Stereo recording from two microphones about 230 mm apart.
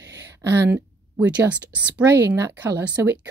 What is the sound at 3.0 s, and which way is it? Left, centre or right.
Speech, right.